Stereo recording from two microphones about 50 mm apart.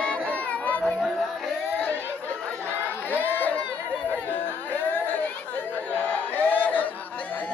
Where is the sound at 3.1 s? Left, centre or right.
Left.